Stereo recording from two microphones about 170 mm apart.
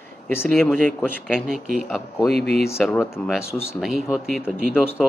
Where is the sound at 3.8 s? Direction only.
5° right (ahead or behind).